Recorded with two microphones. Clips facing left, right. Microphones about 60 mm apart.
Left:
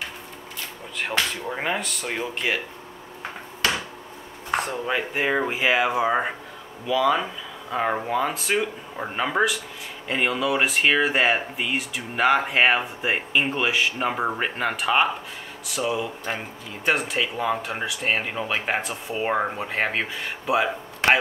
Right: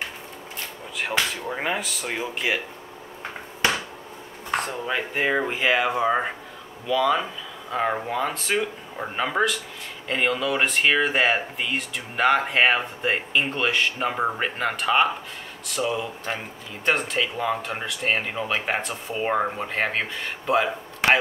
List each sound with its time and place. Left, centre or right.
1.5 s speech: centre
3.6 s a sound: right
4.6 s speech: centre